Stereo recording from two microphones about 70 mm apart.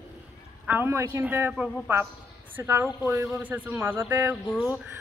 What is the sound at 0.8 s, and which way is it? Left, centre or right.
Speech, right.